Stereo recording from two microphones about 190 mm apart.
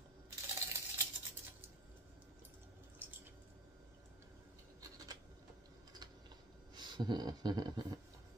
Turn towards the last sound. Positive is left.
turn(degrees=-20)  # may be behind; listen again after turning